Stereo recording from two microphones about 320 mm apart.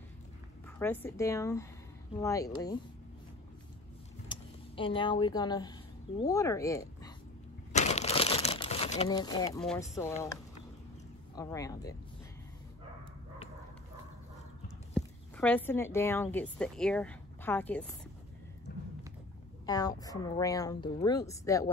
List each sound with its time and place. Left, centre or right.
0.7 s speech: centre
4.3 s speech: centre
7.7 s crumpling: left
9.9 s speech: centre
15.0 s speech: centre
18.7 s a sound: left
19.6 s speech: centre